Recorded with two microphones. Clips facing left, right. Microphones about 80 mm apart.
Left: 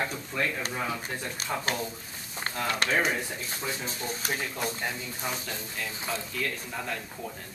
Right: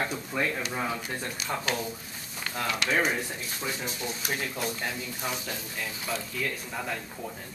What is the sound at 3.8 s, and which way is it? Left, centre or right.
Speech, left.